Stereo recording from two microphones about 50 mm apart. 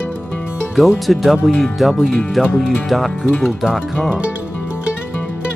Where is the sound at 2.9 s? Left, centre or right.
Centre.